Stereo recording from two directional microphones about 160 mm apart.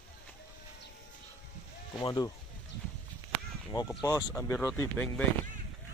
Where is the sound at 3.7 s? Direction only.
20° left (ahead or behind).